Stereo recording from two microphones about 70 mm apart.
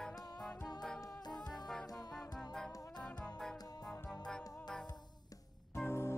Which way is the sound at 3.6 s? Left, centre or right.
Left.